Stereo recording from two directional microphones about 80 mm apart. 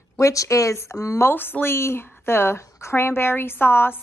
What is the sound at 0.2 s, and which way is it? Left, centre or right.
Speech, left.